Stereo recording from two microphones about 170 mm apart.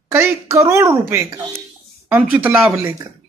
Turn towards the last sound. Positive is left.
turn(degrees=-15)  # may be behind; listen again after turning